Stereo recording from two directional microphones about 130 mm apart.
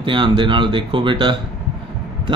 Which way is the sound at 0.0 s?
40° right (ahead or behind).